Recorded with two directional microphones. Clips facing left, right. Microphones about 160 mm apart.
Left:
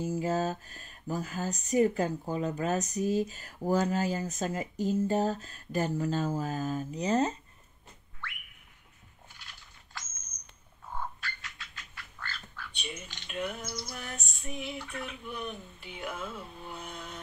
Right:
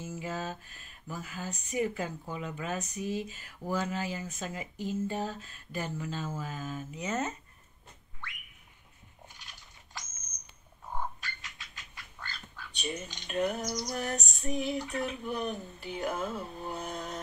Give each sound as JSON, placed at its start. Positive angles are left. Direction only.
{"t": 0.0, "sound": "speech", "side_deg": 40}
{"t": 9.3, "sound": "biting", "side_deg": -15}
{"t": 10.9, "sound": "duck", "side_deg": -15}
{"t": 12.7, "sound": "speech", "side_deg": -40}
{"t": 13.3, "sound": "female singing", "side_deg": -40}